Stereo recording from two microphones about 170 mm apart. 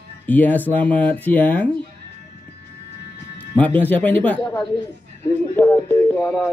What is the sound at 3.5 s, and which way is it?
Speech, 10° left (ahead or behind).